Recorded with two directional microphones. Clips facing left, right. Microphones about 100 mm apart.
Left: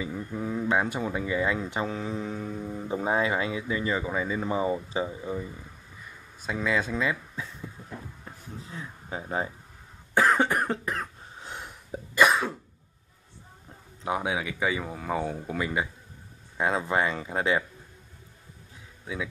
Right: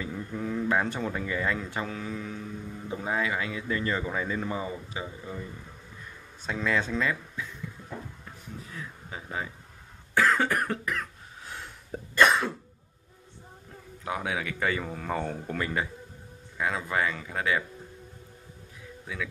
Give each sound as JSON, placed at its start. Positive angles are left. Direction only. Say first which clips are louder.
{"t": 0.0, "sound": "speech", "louder": "left 1 dB", "side_deg": 10}
{"t": 3.0, "sound": "speech", "louder": "left 3 dB", "side_deg": 25}
{"t": 4.5, "sound": "speech", "louder": "left 6 dB", "side_deg": 25}
{"t": 6.4, "sound": "speech", "louder": "left 1 dB", "side_deg": 5}
{"t": 8.6, "sound": "speech", "louder": "left 2 dB", "side_deg": 30}
{"t": 10.1, "sound": "cough", "louder": "left 2 dB", "side_deg": 20}
{"t": 12.2, "sound": "cough", "louder": "even", "side_deg": 5}
{"t": 14.0, "sound": "speech", "louder": "left 3 dB", "side_deg": 20}
{"t": 16.5, "sound": "speech", "louder": "left 3 dB", "side_deg": 25}